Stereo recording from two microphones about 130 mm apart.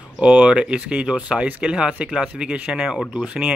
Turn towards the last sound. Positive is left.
turn(degrees=-5)  # may be behind; listen again after turning